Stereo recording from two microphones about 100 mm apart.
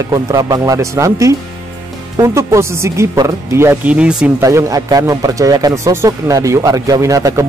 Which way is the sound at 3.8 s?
10° right (ahead or behind).